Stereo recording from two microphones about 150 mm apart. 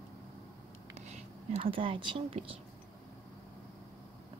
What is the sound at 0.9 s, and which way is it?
Speech, 50° right (ahead or behind).